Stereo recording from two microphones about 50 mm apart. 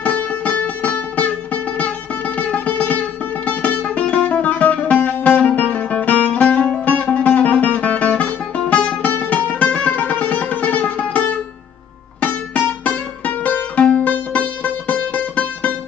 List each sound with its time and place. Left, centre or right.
0.0 s music: left
9.0 s music: left